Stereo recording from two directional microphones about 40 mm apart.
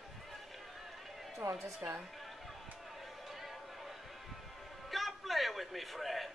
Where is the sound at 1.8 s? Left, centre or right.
Right.